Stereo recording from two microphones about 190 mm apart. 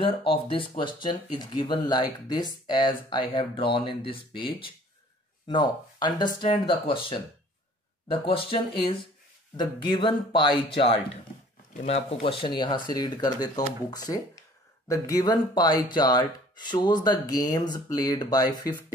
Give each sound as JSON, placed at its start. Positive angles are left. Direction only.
{"t": 0.0, "sound": "speech", "side_deg": 30}